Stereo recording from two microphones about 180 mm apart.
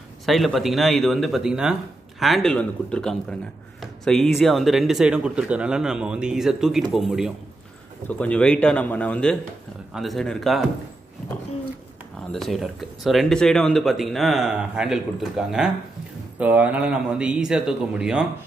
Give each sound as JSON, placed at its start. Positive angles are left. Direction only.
{"t": 0.2, "sound": "speech", "side_deg": 0}
{"t": 8.1, "sound": "speech", "side_deg": 10}
{"t": 12.3, "sound": "speech", "side_deg": 0}